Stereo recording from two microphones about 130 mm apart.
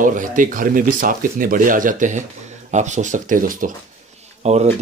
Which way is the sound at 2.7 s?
65° right (ahead or behind).